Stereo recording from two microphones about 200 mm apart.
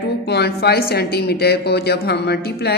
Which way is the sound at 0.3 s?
55° left (ahead or behind).